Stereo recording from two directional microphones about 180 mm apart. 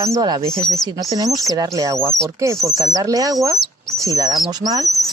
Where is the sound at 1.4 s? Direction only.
20° right (ahead or behind).